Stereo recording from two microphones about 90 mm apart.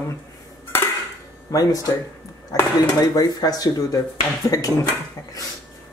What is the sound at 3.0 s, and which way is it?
Speech, 50° left (ahead or behind).